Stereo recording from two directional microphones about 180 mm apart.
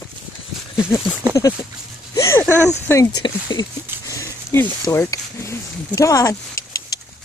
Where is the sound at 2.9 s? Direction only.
20° left (ahead or behind).